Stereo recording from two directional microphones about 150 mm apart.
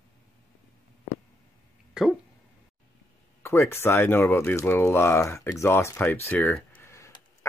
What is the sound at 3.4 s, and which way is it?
Speech, 20° left (ahead or behind).